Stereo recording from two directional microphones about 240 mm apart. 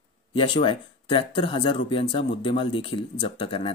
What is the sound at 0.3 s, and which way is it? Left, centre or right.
Speech, left.